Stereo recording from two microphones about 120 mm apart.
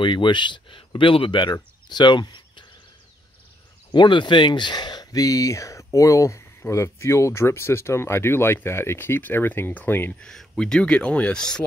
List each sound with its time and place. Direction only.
0.0 s speech: 40° left (ahead or behind)
3.9 s speech: 40° left (ahead or behind); by 10.1 s 15° left (ahead or behind)
10.2 s speech: 5° left (ahead or behind)